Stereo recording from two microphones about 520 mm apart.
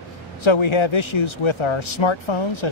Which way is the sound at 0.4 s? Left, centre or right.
Left.